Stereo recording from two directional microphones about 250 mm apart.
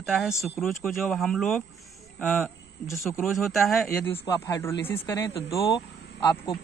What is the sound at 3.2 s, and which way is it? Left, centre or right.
Speech, centre.